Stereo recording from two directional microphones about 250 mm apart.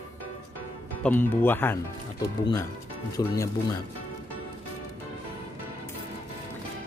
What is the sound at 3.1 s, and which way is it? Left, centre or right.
Music, centre.